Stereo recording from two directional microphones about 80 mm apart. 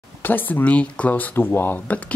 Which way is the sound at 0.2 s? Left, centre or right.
Left.